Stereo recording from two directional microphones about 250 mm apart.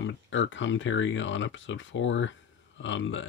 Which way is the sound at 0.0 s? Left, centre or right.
Left.